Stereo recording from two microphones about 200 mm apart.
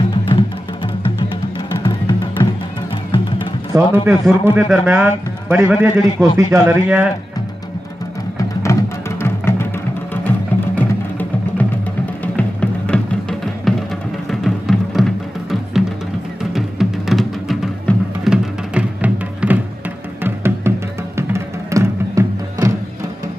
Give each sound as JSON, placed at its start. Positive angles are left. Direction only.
{"t": 0.1, "sound": "music", "side_deg": 25}
{"t": 1.9, "sound": "music", "side_deg": 20}
{"t": 3.7, "sound": "a man's voice", "side_deg": -10}
{"t": 8.7, "sound": "music", "side_deg": 15}
{"t": 10.8, "sound": "music", "side_deg": 10}
{"t": 16.5, "sound": "music", "side_deg": 0}